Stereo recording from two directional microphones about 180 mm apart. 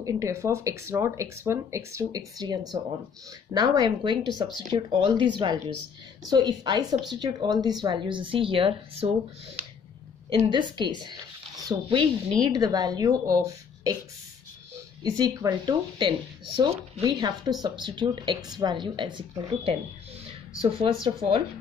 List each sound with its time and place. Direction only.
0.0 s speech: 15° right (ahead or behind)
10.5 s speech: 25° right (ahead or behind)
15.0 s speech: 20° right (ahead or behind)